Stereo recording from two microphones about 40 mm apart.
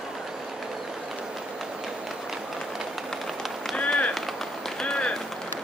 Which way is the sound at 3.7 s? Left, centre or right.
Left.